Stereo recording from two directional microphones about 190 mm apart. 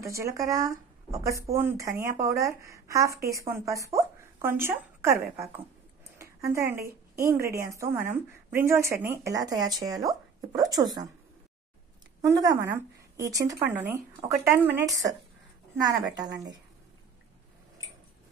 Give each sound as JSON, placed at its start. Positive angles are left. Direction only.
{"t": 0.0, "sound": "a woman's voice", "side_deg": -15}
{"t": 12.2, "sound": "speech", "side_deg": -15}
{"t": 16.2, "sound": "speech", "side_deg": -20}